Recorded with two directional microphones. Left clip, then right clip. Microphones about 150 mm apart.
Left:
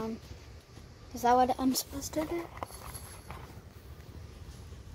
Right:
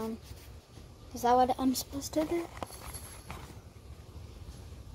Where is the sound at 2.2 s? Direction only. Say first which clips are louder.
Right 3 dB; 60° right (ahead or behind).